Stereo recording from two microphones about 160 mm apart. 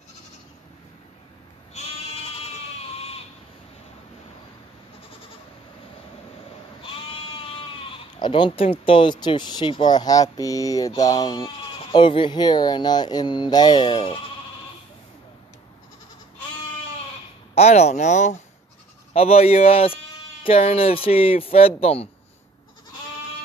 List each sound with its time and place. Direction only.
2.4 s baby cry: 40° left (ahead or behind)
6.8 s sheep: 35° left (ahead or behind)
8.2 s speech: 30° left (ahead or behind)
17.6 s speech: 45° left (ahead or behind)